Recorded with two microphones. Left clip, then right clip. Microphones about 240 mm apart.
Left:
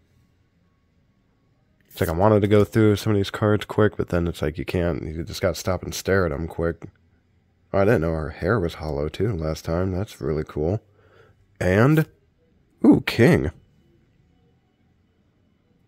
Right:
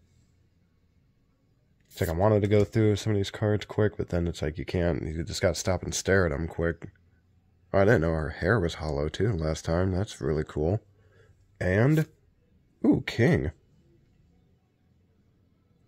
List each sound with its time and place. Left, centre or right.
2.0 s speech: centre